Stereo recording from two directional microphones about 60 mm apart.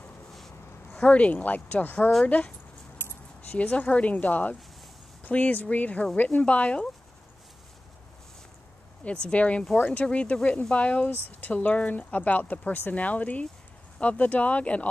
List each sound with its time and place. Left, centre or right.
0.9 s speech: left
3.0 s keys jangling: left
3.5 s speech: left
9.0 s speech: centre